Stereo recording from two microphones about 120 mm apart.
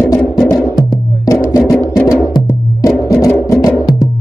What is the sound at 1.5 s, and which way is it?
Music, 25° left (ahead or behind).